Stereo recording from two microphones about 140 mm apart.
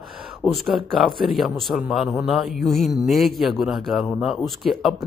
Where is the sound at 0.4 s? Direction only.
Centre (ahead or behind).